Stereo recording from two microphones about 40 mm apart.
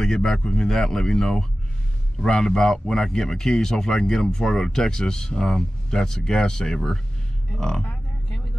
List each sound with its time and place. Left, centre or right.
0.0 s speech: centre
7.8 s vehicle: left